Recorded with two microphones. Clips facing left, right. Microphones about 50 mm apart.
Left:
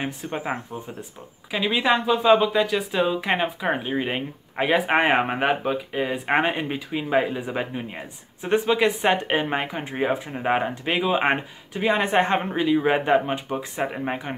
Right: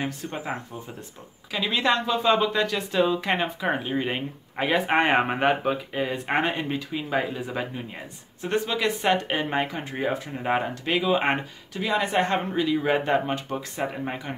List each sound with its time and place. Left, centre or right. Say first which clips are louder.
0.0 s speech: left 2 dB; left; by 6.0 s centre
6.0 s speech: left 3 dB; centre
11.8 s speech: left 3 dB; left